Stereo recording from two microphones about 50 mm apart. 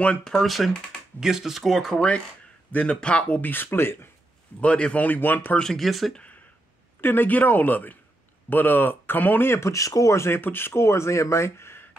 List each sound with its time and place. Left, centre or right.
0.2 s speech: centre
1.2 s speech: centre
1.6 s speech: centre
2.7 s speech: left
4.6 s speech: left
5.6 s speech: centre
5.9 s speech: centre
7.0 s speech: left
9.5 s speech: left
10.3 s speech: left